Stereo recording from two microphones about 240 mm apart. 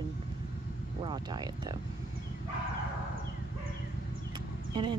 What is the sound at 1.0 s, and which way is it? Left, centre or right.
Speech, centre.